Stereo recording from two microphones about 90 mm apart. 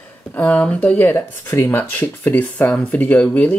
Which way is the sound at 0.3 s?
15° left (ahead or behind).